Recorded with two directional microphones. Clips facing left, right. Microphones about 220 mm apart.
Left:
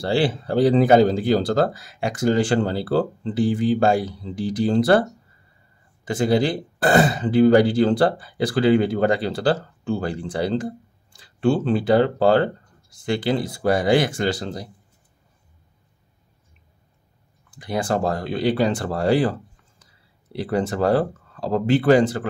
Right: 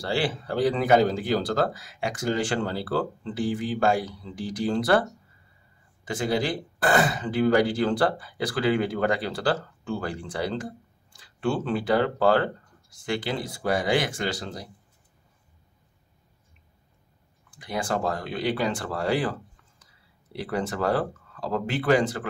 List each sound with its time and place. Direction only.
0.0 s speech: 30° left (ahead or behind)
6.0 s speech: 30° left (ahead or behind)
17.6 s speech: 30° left (ahead or behind)
20.3 s speech: 30° left (ahead or behind)